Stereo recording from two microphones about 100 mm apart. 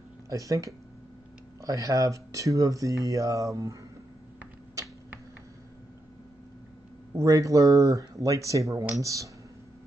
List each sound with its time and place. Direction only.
0.3 s speech: 35° right (ahead or behind)
7.2 s speech: 35° right (ahead or behind)